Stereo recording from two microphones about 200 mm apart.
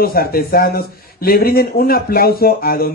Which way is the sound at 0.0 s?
50° left (ahead or behind).